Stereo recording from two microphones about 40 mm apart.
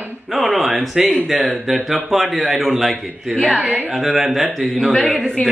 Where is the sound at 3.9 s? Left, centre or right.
Centre.